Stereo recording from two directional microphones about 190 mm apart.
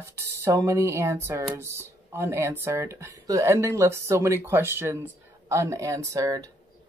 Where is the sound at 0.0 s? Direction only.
15° right (ahead or behind).